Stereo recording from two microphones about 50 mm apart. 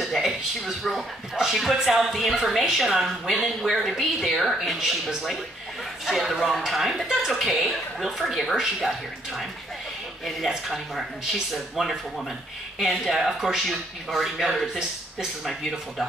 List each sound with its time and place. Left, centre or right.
0.0 s speech: centre
10.5 s speech: centre